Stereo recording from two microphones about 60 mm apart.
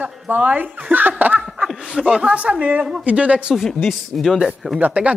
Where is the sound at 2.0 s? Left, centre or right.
Centre.